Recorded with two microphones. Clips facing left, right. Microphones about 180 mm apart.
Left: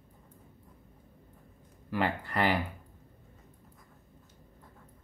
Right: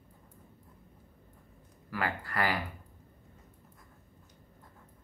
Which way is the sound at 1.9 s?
20° left (ahead or behind).